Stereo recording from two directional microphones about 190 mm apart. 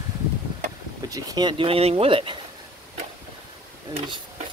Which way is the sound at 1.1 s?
20° right (ahead or behind).